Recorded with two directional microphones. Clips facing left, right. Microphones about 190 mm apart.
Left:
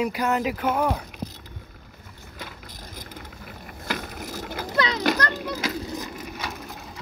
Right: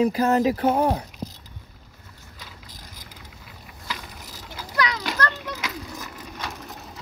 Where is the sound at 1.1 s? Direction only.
55° left (ahead or behind).